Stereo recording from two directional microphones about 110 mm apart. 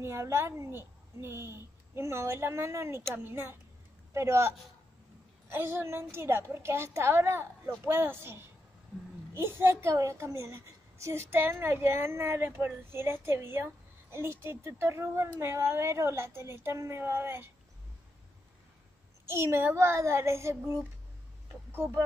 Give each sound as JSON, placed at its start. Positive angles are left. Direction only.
{"t": 0.0, "sound": "a woman's voice", "side_deg": -25}
{"t": 19.2, "sound": "a woman's voice", "side_deg": -25}